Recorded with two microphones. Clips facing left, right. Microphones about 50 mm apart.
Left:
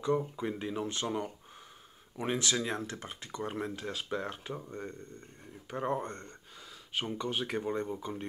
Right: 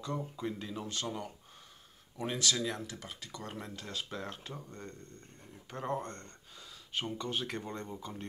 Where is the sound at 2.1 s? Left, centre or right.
Left.